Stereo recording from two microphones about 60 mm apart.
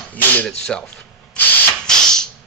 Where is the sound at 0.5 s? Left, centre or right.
Centre.